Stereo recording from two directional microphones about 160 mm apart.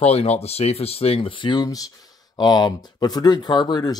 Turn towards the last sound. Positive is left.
turn(degrees=25)  # may be behind; listen again after turning